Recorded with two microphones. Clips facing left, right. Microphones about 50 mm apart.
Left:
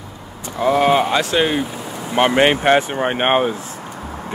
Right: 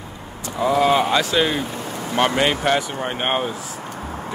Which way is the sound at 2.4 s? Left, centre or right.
Left.